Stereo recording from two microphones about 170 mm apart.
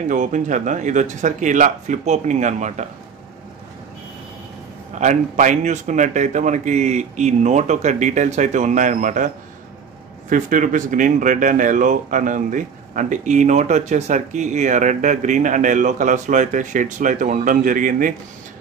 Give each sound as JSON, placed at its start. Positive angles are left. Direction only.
{"t": 0.1, "sound": "speech", "side_deg": -50}
{"t": 5.0, "sound": "speech", "side_deg": -45}
{"t": 10.3, "sound": "speech", "side_deg": -50}